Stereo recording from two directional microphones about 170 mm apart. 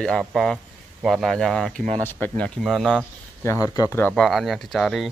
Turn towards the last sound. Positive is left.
turn(degrees=0)  # may be behind; listen again after turning